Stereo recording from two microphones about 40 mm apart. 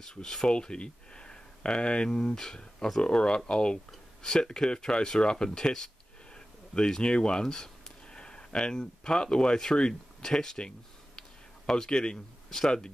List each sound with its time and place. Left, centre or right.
0.0 s speech: centre
0.5 s speech: left
11.1 s a sound: centre